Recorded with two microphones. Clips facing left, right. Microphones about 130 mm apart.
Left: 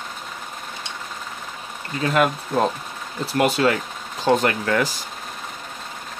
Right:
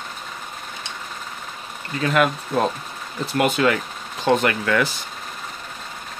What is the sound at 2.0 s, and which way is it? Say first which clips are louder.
Speech: even; 35° left (ahead or behind).